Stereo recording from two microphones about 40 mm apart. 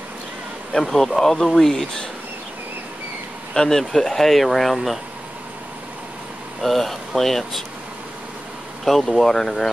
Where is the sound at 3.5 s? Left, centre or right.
Centre.